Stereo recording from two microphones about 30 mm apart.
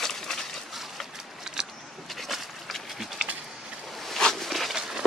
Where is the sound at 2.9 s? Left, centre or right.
Centre.